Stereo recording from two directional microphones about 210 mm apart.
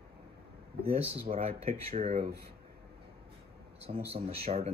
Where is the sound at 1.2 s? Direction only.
30° right (ahead or behind).